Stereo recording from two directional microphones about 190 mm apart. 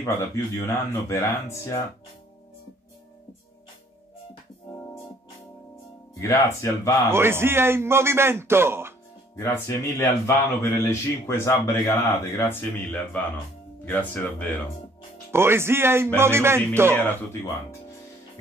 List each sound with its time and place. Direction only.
0.7 s speech: 15° left (ahead or behind)
6.1 s speech: 15° left (ahead or behind)
7.1 s a man's voice: 15° right (ahead or behind)
9.4 s speech: 15° left (ahead or behind)
15.3 s a man's voice: 15° right (ahead or behind)
16.9 s speech: 10° left (ahead or behind)